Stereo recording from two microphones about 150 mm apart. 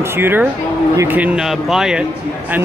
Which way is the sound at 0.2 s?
15° right (ahead or behind).